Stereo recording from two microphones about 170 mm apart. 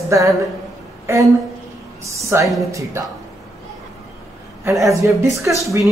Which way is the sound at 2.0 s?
15° right (ahead or behind).